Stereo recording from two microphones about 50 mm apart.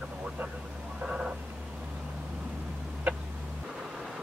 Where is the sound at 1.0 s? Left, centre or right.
Centre.